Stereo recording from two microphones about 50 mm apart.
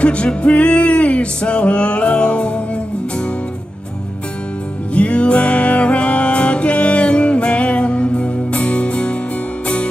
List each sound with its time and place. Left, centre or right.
0.0 s music: left
4.9 s music: left